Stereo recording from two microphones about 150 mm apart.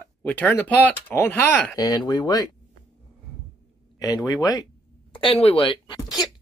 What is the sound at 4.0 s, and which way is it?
Speech, 25° left (ahead or behind).